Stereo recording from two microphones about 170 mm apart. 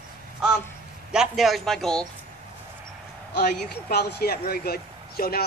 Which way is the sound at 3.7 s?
70° left (ahead or behind).